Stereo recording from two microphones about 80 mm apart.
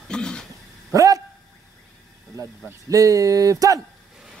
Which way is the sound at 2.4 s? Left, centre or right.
Right.